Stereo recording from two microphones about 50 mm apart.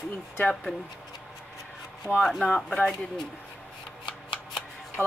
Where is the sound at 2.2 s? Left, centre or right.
Centre.